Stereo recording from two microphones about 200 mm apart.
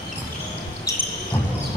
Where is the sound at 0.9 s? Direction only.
15° left (ahead or behind).